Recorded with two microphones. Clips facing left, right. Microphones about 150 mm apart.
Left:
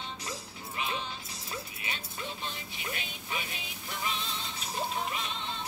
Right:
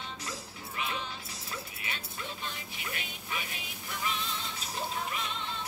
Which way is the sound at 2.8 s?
25° left (ahead or behind).